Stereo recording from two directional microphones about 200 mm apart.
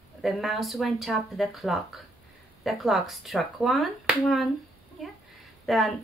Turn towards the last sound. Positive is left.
turn(degrees=0)  # may be behind; listen again after turning